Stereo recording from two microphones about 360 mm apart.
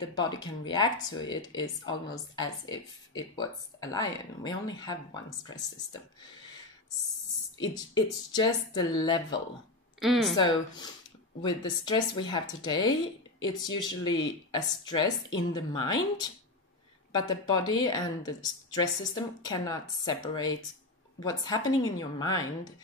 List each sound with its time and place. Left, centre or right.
0.1 s speech: centre
7.5 s speech: centre
9.9 s speech: centre
10.3 s speech: centre
13.7 s speech: left
14.5 s speech: centre